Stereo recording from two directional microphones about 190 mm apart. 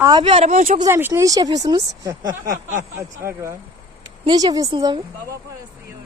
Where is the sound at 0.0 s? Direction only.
25° right (ahead or behind); by 0.7 s 40° right (ahead or behind).